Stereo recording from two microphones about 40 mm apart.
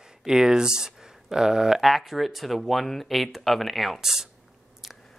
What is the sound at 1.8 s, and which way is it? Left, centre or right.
Speech, centre.